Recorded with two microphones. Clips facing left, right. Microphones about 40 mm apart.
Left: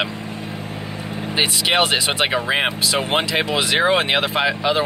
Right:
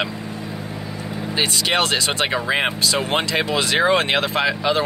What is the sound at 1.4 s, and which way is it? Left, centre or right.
Speech, centre.